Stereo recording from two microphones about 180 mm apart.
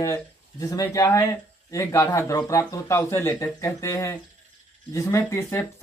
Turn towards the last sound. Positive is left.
turn(degrees=15)  # may be behind; listen again after turning